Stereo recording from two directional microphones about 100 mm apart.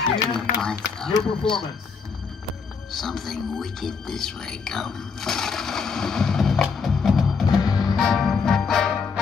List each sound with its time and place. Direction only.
0.1 s speech: 5° left (ahead or behind)
2.9 s speech: 5° left (ahead or behind)
7.4 s music: 40° left (ahead or behind)
7.9 s music: 5° left (ahead or behind)